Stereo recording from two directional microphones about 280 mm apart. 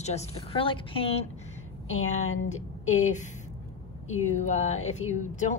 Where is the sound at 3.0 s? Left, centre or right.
Left.